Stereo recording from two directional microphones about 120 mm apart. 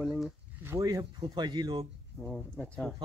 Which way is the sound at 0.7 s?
25° right (ahead or behind).